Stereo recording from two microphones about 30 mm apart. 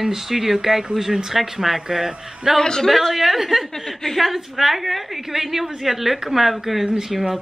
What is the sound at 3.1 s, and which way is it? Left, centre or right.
Speech, centre.